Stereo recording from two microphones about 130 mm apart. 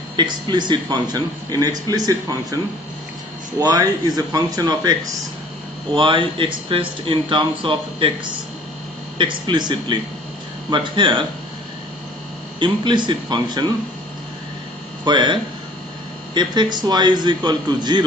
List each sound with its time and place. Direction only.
0.1 s a man's voice: 35° right (ahead or behind)
5.9 s a man's voice: 40° right (ahead or behind)
12.5 s a man's voice: 40° right (ahead or behind)
15.0 s a man's voice: 35° right (ahead or behind)
16.3 s a man's voice: 35° right (ahead or behind)